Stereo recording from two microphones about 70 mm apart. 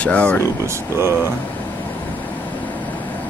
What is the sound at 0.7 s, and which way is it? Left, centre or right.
Speech, right.